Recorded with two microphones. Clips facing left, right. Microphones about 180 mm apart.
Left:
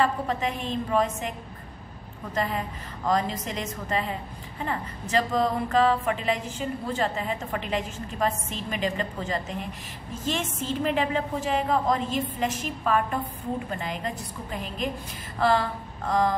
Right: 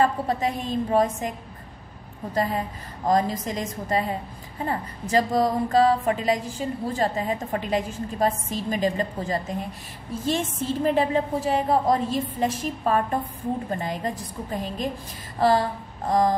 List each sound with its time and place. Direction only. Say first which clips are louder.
0.0 s a woman's voice: right 3 dB; 40° right (ahead or behind)
2.3 s a woman's voice: right 3 dB; 40° right (ahead or behind)
15.3 s a sound: right 3 dB; 40° right (ahead or behind)
16.1 s a woman's voice: right 3 dB; 40° right (ahead or behind)